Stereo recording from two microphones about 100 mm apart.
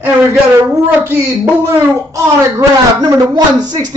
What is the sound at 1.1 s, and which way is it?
Speech, 30° right (ahead or behind).